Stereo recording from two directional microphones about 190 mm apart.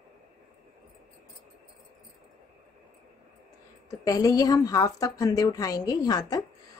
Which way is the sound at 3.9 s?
20° left (ahead or behind).